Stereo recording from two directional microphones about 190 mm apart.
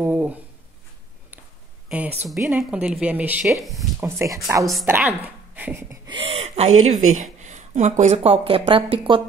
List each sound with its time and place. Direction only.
0.0 s a sound: 10° right (ahead or behind)
1.9 s a woman's voice: 5° right (ahead or behind)
6.0 s speech: 25° right (ahead or behind)
6.7 s speech: 90° right
7.2 s a woman's voice: 40° right (ahead or behind)